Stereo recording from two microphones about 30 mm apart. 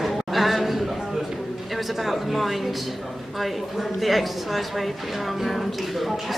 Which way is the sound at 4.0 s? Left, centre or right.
Centre.